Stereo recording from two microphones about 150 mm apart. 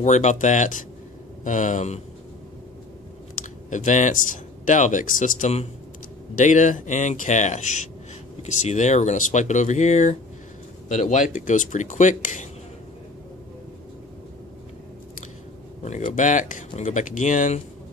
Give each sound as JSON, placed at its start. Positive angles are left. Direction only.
{"t": 0.0, "sound": "speech", "side_deg": 50}
{"t": 3.7, "sound": "speech", "side_deg": 55}
{"t": 15.8, "sound": "speech", "side_deg": 55}